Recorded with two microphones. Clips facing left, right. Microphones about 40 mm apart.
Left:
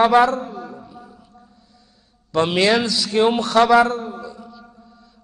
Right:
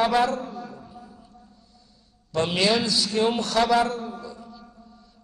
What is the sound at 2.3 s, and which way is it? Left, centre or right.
A man's voice, left.